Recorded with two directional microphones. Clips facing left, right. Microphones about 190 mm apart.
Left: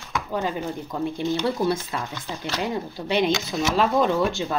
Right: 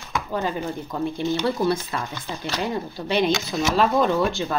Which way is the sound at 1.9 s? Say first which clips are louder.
Right 1 dB; 15° left (ahead or behind).